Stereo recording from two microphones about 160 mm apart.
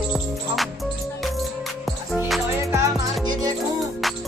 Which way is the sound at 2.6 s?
20° right (ahead or behind).